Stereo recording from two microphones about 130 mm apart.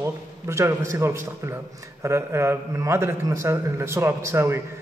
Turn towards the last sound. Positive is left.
turn(degrees=-20)  # may be behind; listen again after turning